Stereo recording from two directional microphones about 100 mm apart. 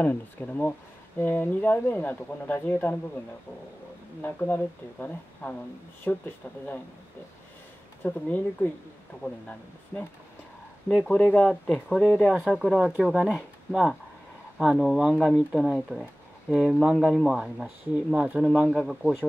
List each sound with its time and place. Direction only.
0.0 s speech: 15° left (ahead or behind)
4.2 s speech: 20° left (ahead or behind)
8.0 s speech: 20° left (ahead or behind); by 12.2 s centre (ahead or behind)
12.3 s speech: 10° right (ahead or behind)
14.6 s speech: 10° right (ahead or behind)